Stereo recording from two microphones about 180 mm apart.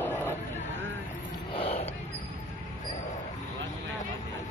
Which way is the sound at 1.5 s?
35° left (ahead or behind).